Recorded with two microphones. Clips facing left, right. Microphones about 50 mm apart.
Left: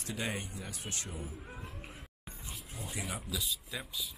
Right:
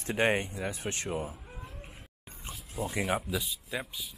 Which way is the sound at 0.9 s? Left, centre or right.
Right.